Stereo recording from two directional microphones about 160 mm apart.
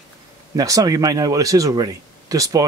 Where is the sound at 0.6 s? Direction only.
20° right (ahead or behind).